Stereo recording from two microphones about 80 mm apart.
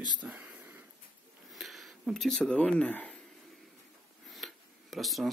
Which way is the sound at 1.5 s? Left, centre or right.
Centre.